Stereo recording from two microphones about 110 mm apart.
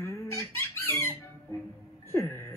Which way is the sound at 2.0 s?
25° left (ahead or behind).